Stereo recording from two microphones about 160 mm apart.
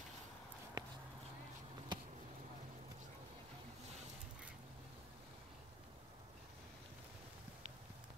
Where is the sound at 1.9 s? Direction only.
25° right (ahead or behind).